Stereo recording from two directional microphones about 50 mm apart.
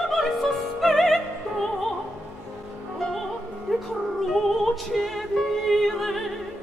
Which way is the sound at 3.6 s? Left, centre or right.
Centre.